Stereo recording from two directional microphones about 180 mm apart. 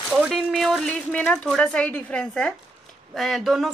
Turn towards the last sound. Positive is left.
turn(degrees=0)  # may be behind; listen again after turning